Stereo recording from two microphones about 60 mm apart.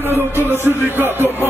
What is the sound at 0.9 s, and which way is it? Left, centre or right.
Music, right.